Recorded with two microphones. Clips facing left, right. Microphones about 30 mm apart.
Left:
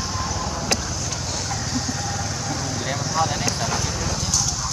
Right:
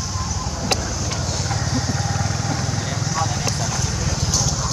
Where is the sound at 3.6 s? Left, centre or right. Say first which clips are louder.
Left 1 dB; centre.